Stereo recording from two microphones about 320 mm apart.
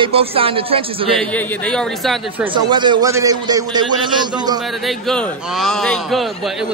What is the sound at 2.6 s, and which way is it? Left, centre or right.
Speech, centre.